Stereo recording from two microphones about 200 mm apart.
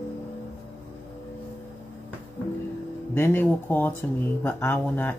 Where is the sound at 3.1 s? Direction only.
10° left (ahead or behind).